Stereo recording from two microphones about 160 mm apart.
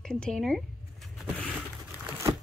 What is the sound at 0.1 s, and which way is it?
Speech, 5° left (ahead or behind).